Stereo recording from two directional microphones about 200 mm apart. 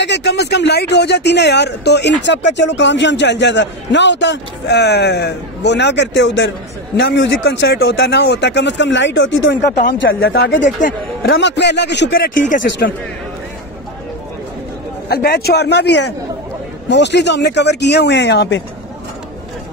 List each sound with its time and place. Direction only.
0.0 s speech: 60° left (ahead or behind)
9.9 s a man's voice: 50° left (ahead or behind)
11.3 s speech: 60° left (ahead or behind); by 12.6 s 45° left (ahead or behind)
15.0 s speech: 50° left (ahead or behind)